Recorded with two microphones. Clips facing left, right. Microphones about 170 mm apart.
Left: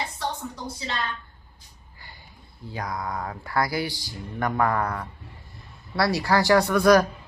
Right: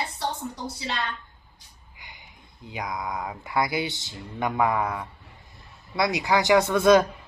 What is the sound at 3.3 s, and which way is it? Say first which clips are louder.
Speech: even; 20° right (ahead or behind).